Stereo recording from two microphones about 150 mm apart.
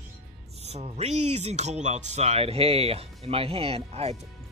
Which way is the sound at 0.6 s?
45° right (ahead or behind).